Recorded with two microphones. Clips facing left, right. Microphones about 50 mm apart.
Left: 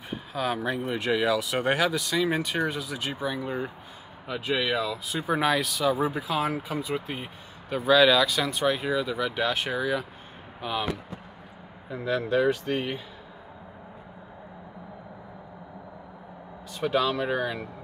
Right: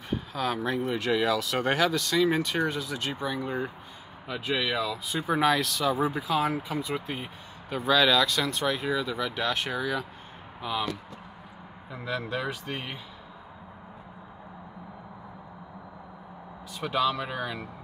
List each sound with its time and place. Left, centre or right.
0.1 s speech: centre
10.6 s speech: centre
11.9 s speech: centre
16.8 s speech: centre